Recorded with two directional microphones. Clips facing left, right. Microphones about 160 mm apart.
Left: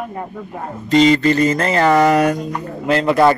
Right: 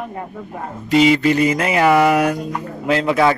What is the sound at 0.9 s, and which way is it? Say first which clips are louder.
Speech: left 1 dB; 10° right (ahead or behind).